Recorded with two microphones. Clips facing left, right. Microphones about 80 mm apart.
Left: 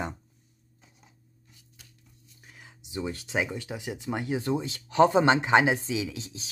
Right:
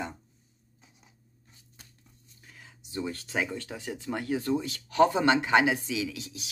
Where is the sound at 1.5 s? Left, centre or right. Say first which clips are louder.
Right 1 dB; right.